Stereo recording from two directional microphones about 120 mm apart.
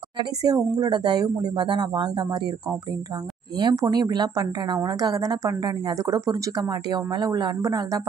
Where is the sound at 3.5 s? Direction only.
40° right (ahead or behind).